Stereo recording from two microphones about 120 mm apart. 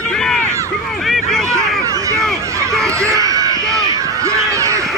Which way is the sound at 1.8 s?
25° right (ahead or behind).